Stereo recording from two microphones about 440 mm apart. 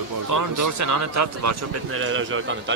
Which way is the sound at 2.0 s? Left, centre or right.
Right.